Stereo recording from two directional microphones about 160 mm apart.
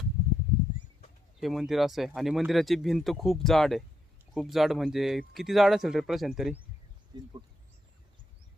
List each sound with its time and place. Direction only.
1.4 s speech: centre (ahead or behind)
7.1 s speech: 30° right (ahead or behind)